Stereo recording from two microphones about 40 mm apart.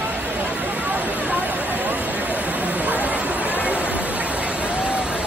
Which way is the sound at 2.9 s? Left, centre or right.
Right.